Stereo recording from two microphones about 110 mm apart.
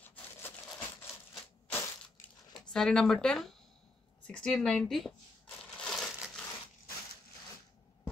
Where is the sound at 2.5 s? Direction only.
5° left (ahead or behind).